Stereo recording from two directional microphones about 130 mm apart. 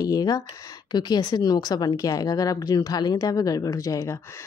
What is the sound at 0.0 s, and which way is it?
A woman's voice, 30° left (ahead or behind).